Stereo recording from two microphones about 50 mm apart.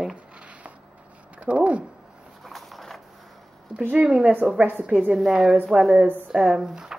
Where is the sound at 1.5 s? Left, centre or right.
Right.